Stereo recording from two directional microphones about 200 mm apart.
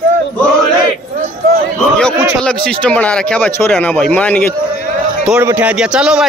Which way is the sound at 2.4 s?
5° left (ahead or behind).